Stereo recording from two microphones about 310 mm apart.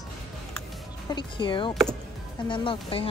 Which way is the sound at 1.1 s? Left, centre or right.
Centre.